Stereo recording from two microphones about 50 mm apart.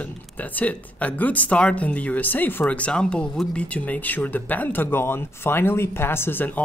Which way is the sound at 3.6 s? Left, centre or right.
Left.